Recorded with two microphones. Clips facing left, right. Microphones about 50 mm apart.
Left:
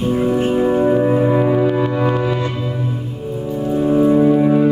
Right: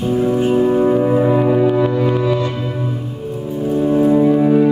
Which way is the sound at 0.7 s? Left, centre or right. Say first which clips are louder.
Right 1 dB; centre.